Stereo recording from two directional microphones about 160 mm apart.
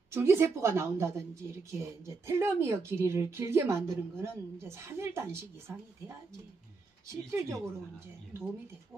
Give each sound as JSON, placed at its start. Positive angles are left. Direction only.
{"t": 0.1, "sound": "speech", "side_deg": -15}
{"t": 7.1, "sound": "speech", "side_deg": -15}